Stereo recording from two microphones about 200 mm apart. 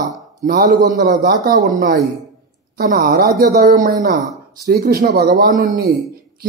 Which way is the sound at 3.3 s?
45° right (ahead or behind).